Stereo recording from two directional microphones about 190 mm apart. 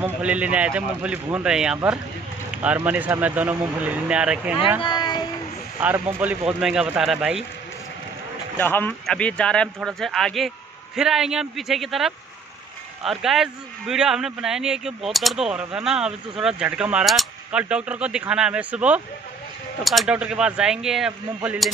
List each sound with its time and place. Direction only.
0.0 s speech: 5° right (ahead or behind)
4.8 s a sound: 20° left (ahead or behind)
5.8 s a man's voice: 10° right (ahead or behind)
8.5 s a man's voice: 10° left (ahead or behind)